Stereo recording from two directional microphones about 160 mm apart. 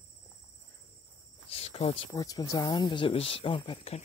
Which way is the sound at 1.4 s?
40° left (ahead or behind).